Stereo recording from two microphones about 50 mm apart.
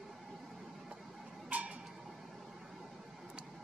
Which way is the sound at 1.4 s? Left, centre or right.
Right.